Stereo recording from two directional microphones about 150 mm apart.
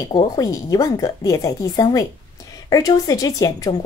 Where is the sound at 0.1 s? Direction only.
25° left (ahead or behind).